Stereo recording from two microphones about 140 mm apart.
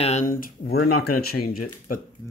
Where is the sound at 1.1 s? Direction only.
90° left.